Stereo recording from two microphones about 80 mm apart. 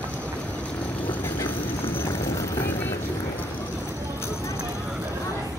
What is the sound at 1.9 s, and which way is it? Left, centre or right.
Vehicle, left.